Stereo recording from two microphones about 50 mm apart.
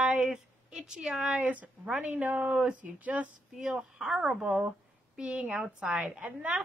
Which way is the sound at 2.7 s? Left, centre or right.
Right.